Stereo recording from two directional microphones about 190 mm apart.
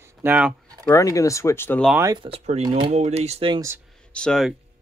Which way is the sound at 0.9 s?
15° left (ahead or behind).